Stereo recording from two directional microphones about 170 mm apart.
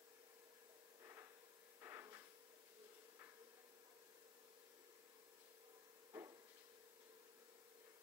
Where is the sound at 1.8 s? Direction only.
15° right (ahead or behind).